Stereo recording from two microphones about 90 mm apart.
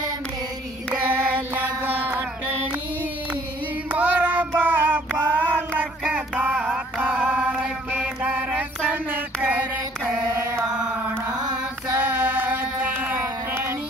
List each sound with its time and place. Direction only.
1.0 s music: 20° right (ahead or behind)
3.9 s child singing: 15° right (ahead or behind)
11.9 s female singing: 20° right (ahead or behind)